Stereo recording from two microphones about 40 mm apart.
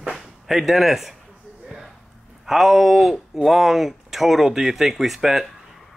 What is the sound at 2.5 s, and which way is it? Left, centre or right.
Speech, centre.